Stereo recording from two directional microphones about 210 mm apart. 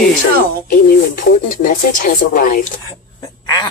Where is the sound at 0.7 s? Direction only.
40° left (ahead or behind).